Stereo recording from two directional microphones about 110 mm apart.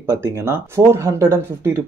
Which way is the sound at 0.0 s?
20° right (ahead or behind).